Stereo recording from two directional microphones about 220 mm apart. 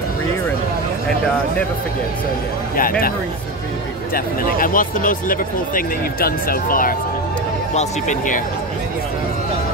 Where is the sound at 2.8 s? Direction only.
40° left (ahead or behind).